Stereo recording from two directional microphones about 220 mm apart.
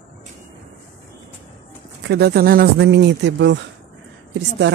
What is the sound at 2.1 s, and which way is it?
Speech, 45° right (ahead or behind).